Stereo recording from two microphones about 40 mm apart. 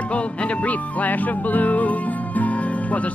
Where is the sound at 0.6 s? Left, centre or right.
Left.